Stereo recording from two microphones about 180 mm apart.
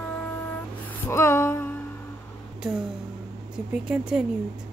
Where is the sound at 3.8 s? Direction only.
5° right (ahead or behind).